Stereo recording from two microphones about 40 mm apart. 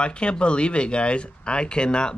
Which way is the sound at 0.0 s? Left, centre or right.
Left.